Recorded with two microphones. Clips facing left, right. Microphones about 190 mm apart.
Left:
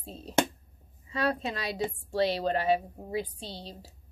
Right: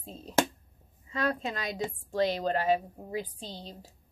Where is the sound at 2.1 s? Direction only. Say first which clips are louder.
Even; 35° left (ahead or behind).